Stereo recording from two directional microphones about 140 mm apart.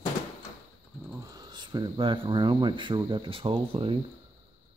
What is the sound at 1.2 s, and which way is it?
Speech, 30° right (ahead or behind).